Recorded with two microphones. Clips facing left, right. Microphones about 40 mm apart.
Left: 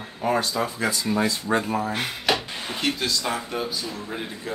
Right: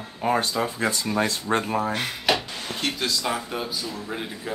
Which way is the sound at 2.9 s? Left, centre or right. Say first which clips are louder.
Left 1 dB; centre.